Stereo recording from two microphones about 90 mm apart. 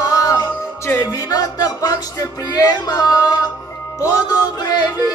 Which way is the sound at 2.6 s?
45° left (ahead or behind).